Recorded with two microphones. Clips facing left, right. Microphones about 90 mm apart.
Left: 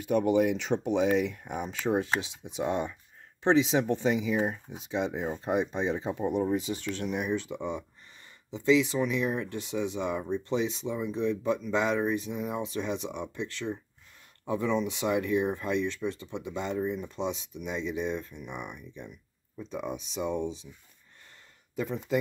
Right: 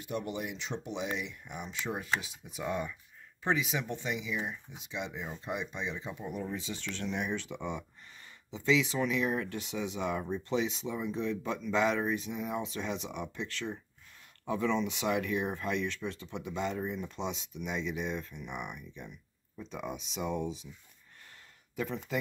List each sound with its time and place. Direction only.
0.4 s speech: 55° left (ahead or behind)
1.9 s speech: 30° left (ahead or behind)
3.8 s speech: 40° left (ahead or behind)
6.2 s speech: 25° left (ahead or behind)
6.6 s speech: 45° left (ahead or behind)
7.1 s speech: 5° left (ahead or behind)
21.7 s speech: 5° left (ahead or behind)